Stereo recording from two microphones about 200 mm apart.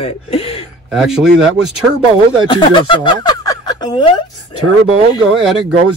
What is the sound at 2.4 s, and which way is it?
Speech, 25° left (ahead or behind).